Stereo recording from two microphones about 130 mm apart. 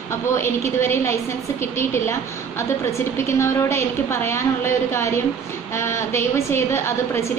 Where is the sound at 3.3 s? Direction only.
20° left (ahead or behind).